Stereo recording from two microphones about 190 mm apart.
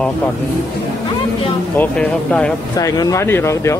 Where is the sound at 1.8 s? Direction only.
5° left (ahead or behind).